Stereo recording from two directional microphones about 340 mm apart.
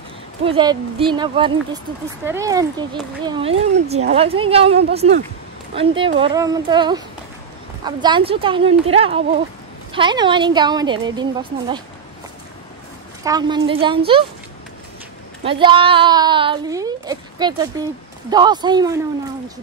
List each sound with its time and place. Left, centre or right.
0.4 s speech: centre
13.2 s speech: centre
15.4 s speech: centre